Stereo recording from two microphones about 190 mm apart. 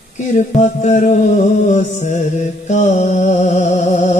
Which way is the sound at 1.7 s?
40° left (ahead or behind).